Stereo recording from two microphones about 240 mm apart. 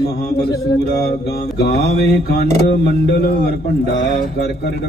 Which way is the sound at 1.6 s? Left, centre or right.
Left.